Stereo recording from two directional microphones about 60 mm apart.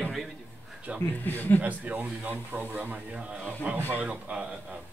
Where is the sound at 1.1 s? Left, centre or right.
Left.